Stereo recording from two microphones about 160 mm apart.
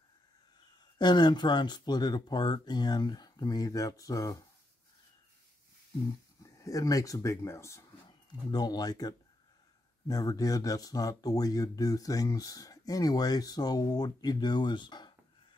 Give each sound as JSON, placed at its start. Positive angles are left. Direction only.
{"t": 0.9, "sound": "speech", "side_deg": 30}
{"t": 6.4, "sound": "speech", "side_deg": 20}